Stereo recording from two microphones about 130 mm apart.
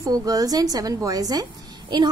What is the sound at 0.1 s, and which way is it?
A woman's voice, 30° right (ahead or behind).